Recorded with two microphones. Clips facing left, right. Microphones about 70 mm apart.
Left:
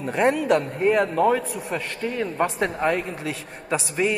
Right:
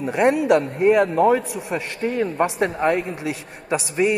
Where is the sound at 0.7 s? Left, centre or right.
Centre.